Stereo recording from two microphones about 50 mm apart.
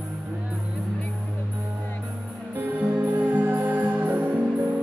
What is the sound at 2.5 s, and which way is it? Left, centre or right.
Music, right.